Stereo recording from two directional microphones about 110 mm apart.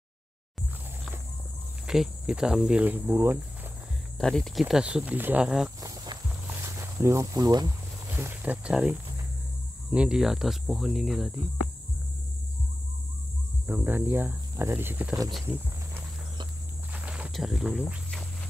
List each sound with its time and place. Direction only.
1.9 s speech: 5° right (ahead or behind); by 3.3 s 20° right (ahead or behind)
4.2 s speech: 5° left (ahead or behind)
5.8 s walk: 35° right (ahead or behind)
6.6 s speech: 25° right (ahead or behind)
8.1 s speech: 20° right (ahead or behind); by 11.3 s centre (ahead or behind)
13.7 s speech: 20° right (ahead or behind)
16.9 s walk: 10° right (ahead or behind)
17.3 s speech: centre (ahead or behind)